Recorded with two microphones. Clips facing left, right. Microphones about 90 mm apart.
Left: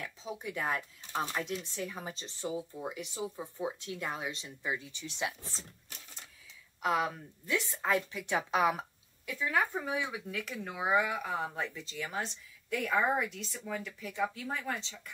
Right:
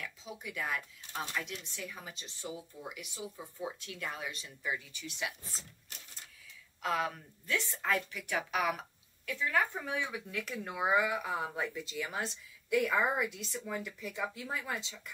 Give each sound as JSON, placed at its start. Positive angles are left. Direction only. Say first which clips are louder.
{"t": 0.0, "sound": "speech", "louder": "left 4 dB", "side_deg": 30}
{"t": 6.8, "sound": "speech", "louder": "left 3 dB", "side_deg": 15}